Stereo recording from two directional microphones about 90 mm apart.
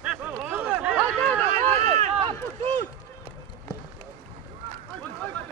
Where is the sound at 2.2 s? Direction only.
90° right.